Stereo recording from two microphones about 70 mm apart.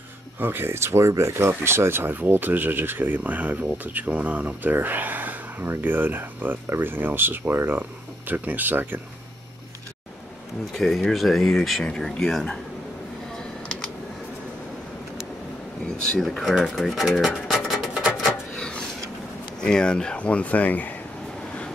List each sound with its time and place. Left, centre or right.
0.4 s speech: right
10.7 s speech: centre
16.1 s speech: centre
16.6 s a sound: centre
19.6 s speech: centre